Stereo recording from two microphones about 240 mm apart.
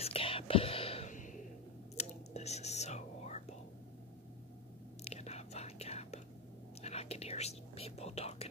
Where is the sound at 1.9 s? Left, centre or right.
Left.